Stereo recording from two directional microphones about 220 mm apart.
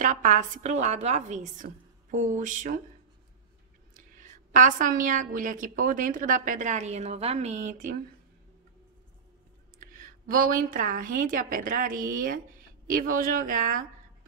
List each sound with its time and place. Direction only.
0.0 s a woman's voice: 35° right (ahead or behind)
3.9 s a woman's voice: 35° right (ahead or behind)
9.8 s a woman's voice: 40° right (ahead or behind)